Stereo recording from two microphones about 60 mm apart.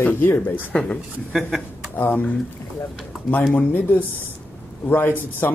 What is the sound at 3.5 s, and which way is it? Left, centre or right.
Speech, left.